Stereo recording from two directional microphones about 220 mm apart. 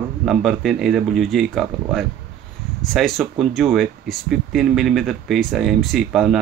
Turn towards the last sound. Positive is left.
turn(degrees=0)  # may be behind; listen again after turning